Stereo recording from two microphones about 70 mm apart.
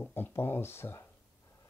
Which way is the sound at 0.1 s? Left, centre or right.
Left.